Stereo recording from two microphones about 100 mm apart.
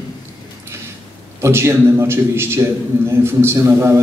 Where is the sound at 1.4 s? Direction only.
25° right (ahead or behind).